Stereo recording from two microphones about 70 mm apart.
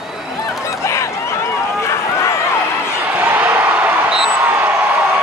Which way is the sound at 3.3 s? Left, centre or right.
Right.